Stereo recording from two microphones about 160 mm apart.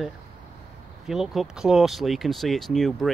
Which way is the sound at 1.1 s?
Centre (ahead or behind).